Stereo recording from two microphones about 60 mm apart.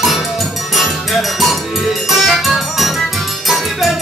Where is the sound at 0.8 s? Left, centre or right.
Centre.